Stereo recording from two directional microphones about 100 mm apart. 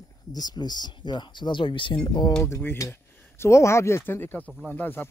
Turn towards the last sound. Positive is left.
turn(degrees=20)  # may be behind; listen again after turning